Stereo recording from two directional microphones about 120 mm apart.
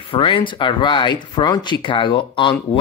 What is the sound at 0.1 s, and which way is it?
Speech, 45° left (ahead or behind).